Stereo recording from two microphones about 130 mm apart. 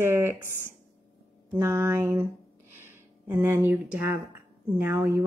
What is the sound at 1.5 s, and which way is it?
A woman's voice, 20° right (ahead or behind).